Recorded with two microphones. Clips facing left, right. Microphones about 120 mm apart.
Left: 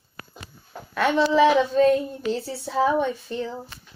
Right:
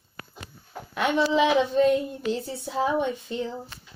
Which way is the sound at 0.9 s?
15° right (ahead or behind).